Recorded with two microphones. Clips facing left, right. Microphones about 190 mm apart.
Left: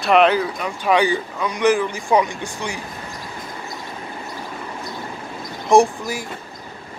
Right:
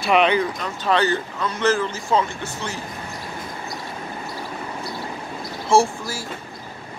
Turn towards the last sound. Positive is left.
turn(degrees=15)  # may be behind; listen again after turning